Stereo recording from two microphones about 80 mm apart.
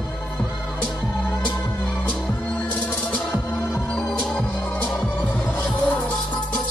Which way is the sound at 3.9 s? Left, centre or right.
Centre.